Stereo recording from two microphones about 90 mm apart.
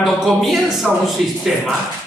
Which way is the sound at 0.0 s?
Centre (ahead or behind).